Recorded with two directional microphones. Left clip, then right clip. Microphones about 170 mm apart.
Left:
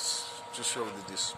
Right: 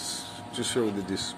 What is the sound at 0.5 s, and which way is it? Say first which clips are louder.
Speech: right 7 dB; 20° left (ahead or behind).